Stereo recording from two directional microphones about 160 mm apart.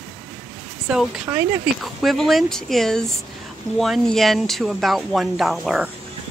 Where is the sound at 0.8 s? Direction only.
Centre (ahead or behind).